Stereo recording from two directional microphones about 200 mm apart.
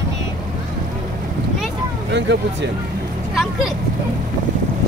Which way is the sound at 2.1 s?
60° right (ahead or behind).